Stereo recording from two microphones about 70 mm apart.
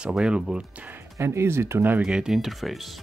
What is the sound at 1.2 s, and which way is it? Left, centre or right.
Speech, right.